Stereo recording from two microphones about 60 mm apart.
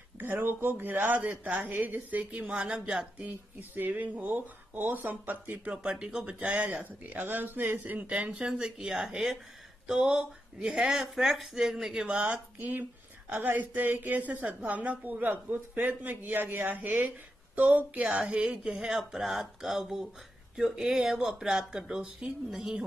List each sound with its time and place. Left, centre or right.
0.2 s a woman's voice: right; by 3.1 s centre
3.2 s a woman's voice: right
5.7 s speech: centre; by 8.1 s right
8.1 s speech: centre
12.2 s a woman's voice: right; by 22.8 s centre